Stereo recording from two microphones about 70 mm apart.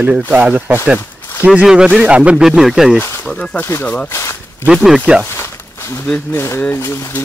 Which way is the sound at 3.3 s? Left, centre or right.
Centre.